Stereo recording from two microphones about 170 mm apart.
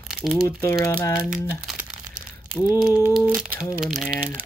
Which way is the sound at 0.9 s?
15° left (ahead or behind).